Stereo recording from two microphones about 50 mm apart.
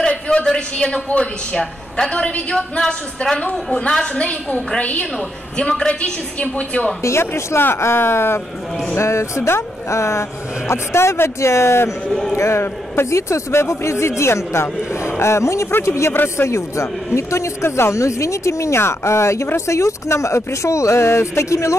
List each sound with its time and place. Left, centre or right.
0.0 s a woman's voice: left
3.9 s a woman's voice: centre
7.0 s speech: left
8.9 s speech: left
15.8 s speech: left
18.8 s speech: left